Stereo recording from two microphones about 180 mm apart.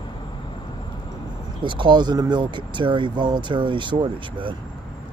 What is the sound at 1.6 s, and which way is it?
Speech, 25° right (ahead or behind).